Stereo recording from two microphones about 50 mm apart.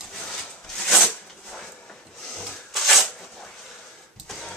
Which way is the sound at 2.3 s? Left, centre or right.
Centre.